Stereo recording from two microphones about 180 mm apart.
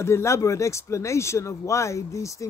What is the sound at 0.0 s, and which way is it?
Speech, 15° left (ahead or behind).